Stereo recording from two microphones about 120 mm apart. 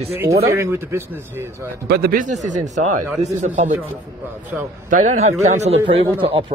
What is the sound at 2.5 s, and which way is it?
Speech, 85° right.